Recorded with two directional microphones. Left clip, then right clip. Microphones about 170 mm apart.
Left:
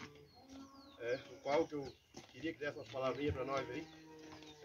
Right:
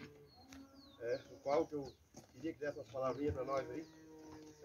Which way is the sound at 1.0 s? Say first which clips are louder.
Even; 10° right (ahead or behind).